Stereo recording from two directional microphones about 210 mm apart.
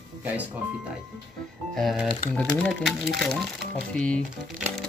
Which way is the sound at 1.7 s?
Centre (ahead or behind).